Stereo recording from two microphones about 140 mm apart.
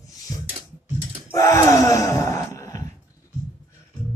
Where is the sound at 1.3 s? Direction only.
20° left (ahead or behind).